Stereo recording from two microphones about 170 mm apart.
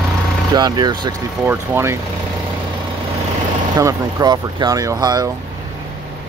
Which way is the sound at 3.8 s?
20° right (ahead or behind).